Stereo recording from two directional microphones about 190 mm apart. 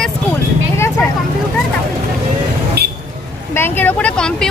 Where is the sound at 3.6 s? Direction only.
10° left (ahead or behind).